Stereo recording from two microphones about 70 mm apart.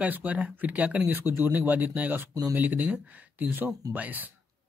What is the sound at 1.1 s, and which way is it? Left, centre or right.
Speech, right.